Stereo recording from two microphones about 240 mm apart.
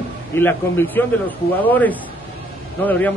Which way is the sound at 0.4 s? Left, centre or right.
Centre.